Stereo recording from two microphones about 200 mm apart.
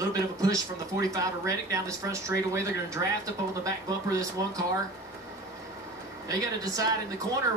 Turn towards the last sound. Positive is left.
turn(degrees=-15)  # may be behind; listen again after turning